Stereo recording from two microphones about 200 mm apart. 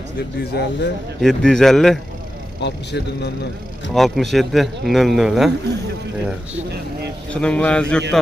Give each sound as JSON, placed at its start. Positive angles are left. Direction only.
{"t": 0.4, "sound": "a man's voice", "side_deg": 55}
{"t": 1.2, "sound": "speech", "side_deg": 0}
{"t": 2.6, "sound": "a man's voice", "side_deg": 55}
{"t": 3.9, "sound": "speech", "side_deg": 0}
{"t": 7.3, "sound": "speech", "side_deg": 5}